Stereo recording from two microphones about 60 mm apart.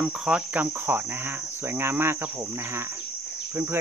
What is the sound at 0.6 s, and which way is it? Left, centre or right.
Cricket, right.